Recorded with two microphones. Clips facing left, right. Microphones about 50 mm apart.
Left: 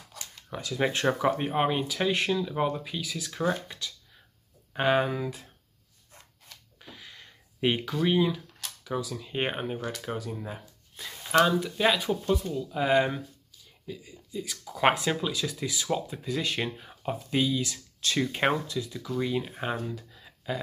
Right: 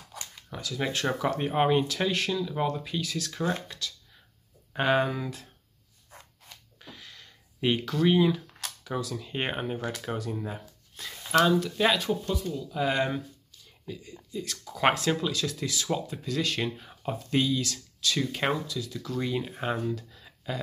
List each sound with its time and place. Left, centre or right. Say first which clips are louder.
0.5 s speech: left 2 dB; left
0.7 s speech: left 3 dB; centre
1.5 s speech: right 3 dB; centre
2.1 s speech: left 1 dB; centre
4.7 s speech: even; centre
6.8 s a sound: even; centre
8.8 s speech: left 1 dB; centre
12.0 s speech: left 2 dB; centre
13.9 s speech: even; centre
18.0 s speech: left 2 dB; left
19.1 s speech: left 1 dB; centre
20.0 s a sound: right 1 dB; centre